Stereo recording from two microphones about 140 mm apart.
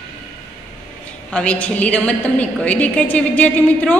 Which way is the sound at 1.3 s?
10° left (ahead or behind).